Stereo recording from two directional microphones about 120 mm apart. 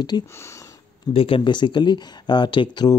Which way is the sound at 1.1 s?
50° left (ahead or behind).